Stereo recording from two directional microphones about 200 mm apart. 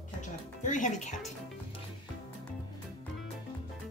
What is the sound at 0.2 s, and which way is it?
Speech, 40° left (ahead or behind).